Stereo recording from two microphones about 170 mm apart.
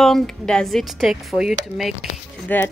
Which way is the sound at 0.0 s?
5° left (ahead or behind).